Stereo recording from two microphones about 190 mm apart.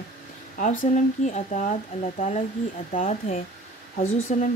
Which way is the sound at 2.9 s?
40° left (ahead or behind).